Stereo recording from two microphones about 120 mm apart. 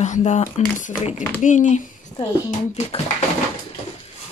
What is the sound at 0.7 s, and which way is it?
Speech, 90° left.